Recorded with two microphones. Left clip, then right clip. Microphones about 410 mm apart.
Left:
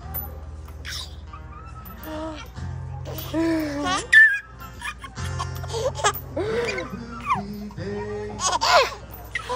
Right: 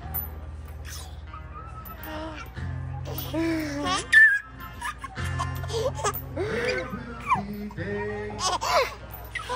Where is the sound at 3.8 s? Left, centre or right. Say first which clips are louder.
Left 3 dB; centre.